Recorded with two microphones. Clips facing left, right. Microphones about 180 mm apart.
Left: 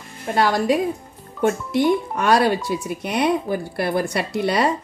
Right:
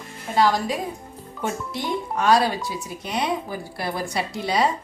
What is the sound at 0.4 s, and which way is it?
A woman's voice, 60° left (ahead or behind).